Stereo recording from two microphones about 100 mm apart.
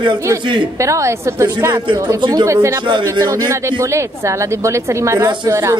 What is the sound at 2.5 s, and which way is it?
A woman's voice, 30° right (ahead or behind).